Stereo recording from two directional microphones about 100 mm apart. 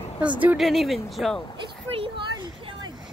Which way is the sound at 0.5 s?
Centre (ahead or behind).